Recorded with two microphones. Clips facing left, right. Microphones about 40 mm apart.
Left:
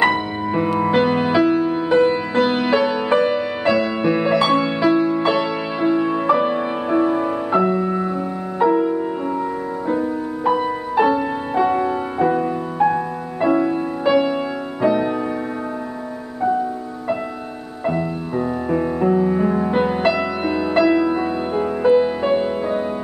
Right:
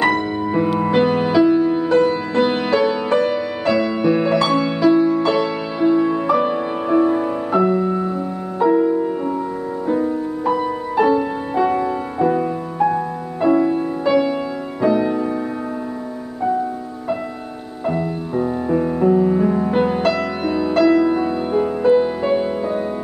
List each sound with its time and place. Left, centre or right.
0.0 s music: centre
1.3 s music: centre
2.3 s music: centre
17.8 s music: centre